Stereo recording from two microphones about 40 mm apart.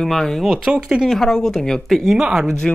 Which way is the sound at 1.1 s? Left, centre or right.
Centre.